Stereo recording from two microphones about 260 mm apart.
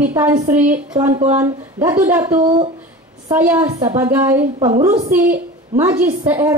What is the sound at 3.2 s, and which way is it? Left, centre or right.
A woman's voice, centre.